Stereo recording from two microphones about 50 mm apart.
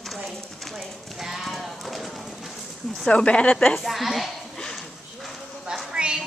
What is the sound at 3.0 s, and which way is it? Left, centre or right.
Speech, centre.